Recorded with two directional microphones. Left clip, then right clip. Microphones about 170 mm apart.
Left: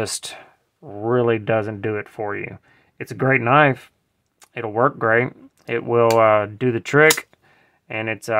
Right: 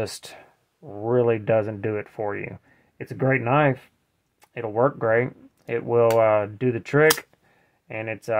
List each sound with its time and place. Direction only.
0.0 s speech: 30° left (ahead or behind)
3.0 s speech: 35° left (ahead or behind)